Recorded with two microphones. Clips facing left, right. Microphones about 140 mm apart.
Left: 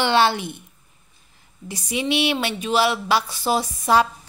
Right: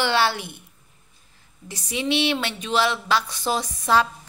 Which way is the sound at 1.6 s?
10° left (ahead or behind).